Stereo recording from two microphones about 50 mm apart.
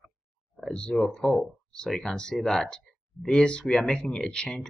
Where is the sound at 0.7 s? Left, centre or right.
Centre.